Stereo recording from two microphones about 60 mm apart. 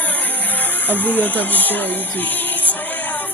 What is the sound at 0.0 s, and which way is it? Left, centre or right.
Music, left.